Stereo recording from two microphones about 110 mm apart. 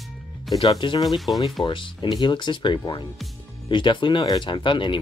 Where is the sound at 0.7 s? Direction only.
50° left (ahead or behind).